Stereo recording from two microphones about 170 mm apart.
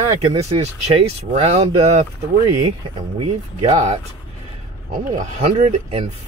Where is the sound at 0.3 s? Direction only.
40° right (ahead or behind).